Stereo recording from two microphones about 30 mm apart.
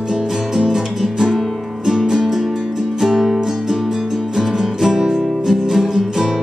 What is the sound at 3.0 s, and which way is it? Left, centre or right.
Music, centre.